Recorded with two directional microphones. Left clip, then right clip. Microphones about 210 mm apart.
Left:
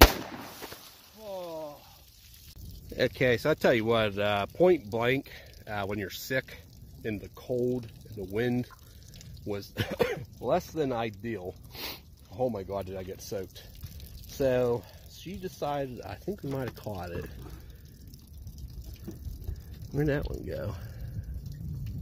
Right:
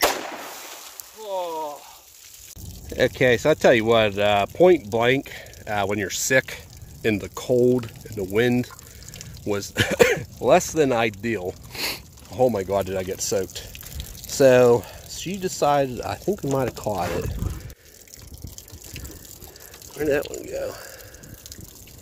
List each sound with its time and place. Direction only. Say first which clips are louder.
1.3 s a sound: right 11 dB; 50° right (ahead or behind)
3.0 s speech: right 7 dB; 5° left (ahead or behind); by 8.3 s 30° right (ahead or behind)
8.3 s a sound: right 10 dB; 10° right (ahead or behind)
12.4 s speech: right 11 dB; 20° right (ahead or behind)
16.3 s speech: right 12 dB; 5° left (ahead or behind)
20.0 s speech: right 8 dB; 5° right (ahead or behind)